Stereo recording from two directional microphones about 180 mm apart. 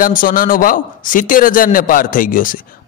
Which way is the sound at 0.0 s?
50° left (ahead or behind).